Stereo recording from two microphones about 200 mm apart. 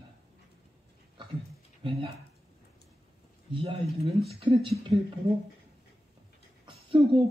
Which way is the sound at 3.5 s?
25° right (ahead or behind).